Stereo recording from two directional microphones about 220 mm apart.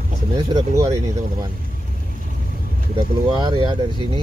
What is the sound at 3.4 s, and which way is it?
Speech, 20° right (ahead or behind).